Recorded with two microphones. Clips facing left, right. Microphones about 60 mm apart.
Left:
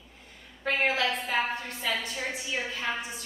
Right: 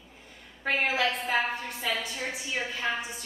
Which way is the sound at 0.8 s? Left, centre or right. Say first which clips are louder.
Left 1 dB; centre.